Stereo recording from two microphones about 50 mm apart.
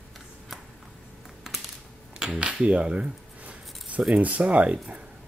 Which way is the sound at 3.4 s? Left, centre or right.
Right.